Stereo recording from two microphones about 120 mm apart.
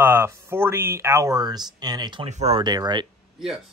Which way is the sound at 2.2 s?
65° right (ahead or behind).